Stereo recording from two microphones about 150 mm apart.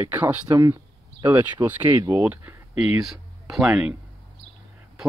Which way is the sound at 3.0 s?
Centre (ahead or behind).